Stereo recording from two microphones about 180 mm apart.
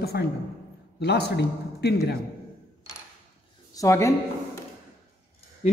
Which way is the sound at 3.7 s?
15° left (ahead or behind).